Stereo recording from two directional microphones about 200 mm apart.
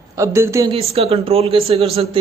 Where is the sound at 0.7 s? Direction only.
30° right (ahead or behind).